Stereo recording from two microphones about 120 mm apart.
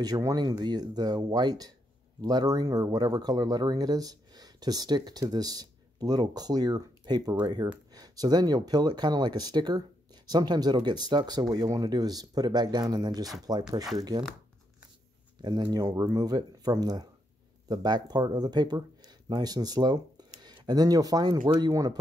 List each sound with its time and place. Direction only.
0.0 s speech: 30° right (ahead or behind)
15.4 s speech: 35° right (ahead or behind)